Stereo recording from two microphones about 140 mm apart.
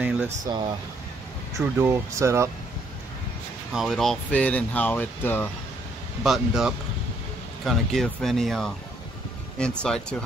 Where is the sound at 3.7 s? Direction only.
Centre (ahead or behind); by 5.5 s 15° left (ahead or behind).